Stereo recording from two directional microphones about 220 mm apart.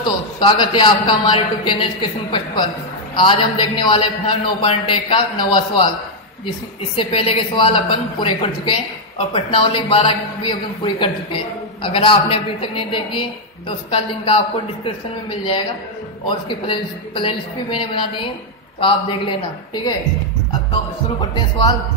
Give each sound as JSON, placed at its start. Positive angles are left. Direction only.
{"t": 0.0, "sound": "speech", "side_deg": 20}
{"t": 7.0, "sound": "speech", "side_deg": 25}
{"t": 21.2, "sound": "speech", "side_deg": 20}